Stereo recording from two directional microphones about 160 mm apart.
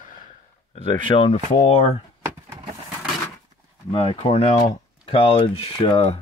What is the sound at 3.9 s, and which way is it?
Speech, 30° left (ahead or behind).